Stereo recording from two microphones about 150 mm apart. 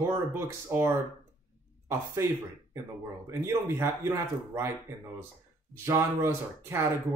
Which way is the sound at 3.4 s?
15° right (ahead or behind).